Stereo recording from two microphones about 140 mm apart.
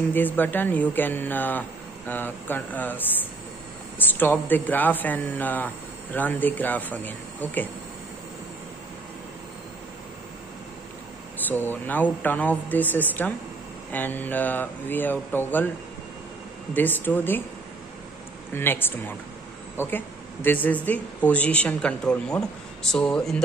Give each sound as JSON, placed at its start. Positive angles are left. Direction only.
{"t": 0.1, "sound": "speech", "side_deg": 15}
{"t": 4.1, "sound": "speech", "side_deg": 15}
{"t": 11.4, "sound": "speech", "side_deg": 15}
{"t": 16.7, "sound": "speech", "side_deg": 15}
{"t": 18.5, "sound": "speech", "side_deg": 15}